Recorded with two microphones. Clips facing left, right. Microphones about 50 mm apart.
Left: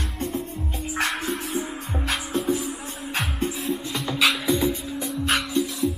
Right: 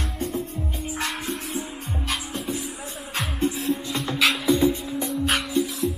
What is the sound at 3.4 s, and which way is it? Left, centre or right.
Music, centre.